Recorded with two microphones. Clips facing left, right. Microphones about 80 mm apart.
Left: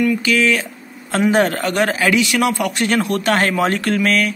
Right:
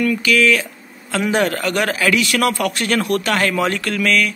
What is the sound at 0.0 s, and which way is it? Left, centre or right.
A man's voice, left.